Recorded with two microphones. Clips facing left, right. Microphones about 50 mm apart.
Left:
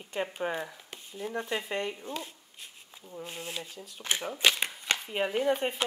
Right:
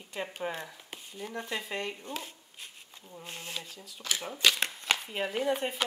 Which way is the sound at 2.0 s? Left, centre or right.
Centre.